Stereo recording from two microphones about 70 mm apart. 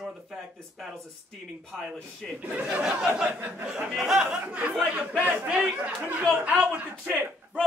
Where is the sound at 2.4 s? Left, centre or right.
Centre.